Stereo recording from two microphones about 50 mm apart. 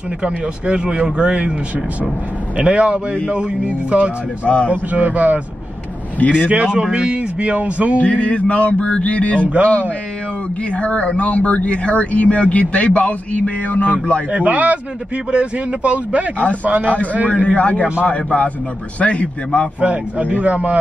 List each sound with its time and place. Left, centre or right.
0.2 s speech: centre
2.5 s speech: right
4.5 s speech: left
4.9 s speech: right
6.1 s a man's voice: left
6.5 s speech: centre
8.0 s speech: left
10.7 s speech: left
14.3 s speech: right
17.5 s speech: left
19.8 s speech: right